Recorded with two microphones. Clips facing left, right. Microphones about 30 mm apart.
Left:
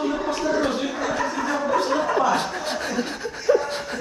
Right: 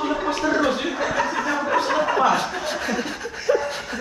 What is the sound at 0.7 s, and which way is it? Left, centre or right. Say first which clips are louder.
Chuckle: right 1 dB; right.